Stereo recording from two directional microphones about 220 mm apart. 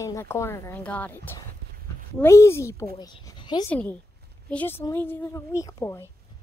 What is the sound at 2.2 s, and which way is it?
Speech, 10° left (ahead or behind).